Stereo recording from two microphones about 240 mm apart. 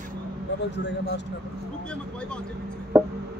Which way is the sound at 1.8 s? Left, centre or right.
Centre.